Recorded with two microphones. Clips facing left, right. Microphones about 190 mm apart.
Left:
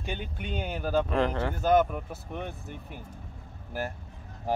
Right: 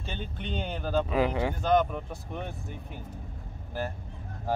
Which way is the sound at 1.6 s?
5° left (ahead or behind).